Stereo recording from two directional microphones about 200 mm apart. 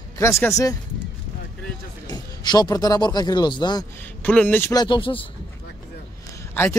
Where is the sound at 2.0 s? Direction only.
20° left (ahead or behind).